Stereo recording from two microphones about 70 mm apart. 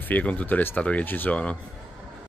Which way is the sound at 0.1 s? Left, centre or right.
Centre.